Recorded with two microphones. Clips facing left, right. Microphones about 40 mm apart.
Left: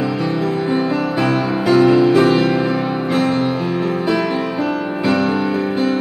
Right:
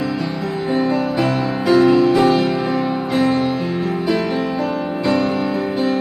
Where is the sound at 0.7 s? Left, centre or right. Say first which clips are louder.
Even; left.